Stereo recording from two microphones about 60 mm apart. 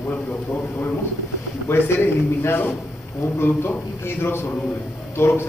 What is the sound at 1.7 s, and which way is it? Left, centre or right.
A man's voice, left.